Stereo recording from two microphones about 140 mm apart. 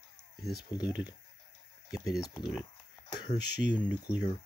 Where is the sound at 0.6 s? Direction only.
30° left (ahead or behind).